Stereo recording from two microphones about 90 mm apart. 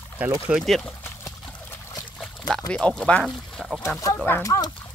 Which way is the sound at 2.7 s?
15° left (ahead or behind).